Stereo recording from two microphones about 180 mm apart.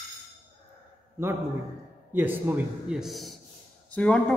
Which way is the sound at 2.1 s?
10° right (ahead or behind).